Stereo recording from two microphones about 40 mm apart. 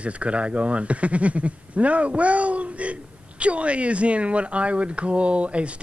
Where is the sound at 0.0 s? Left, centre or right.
Right.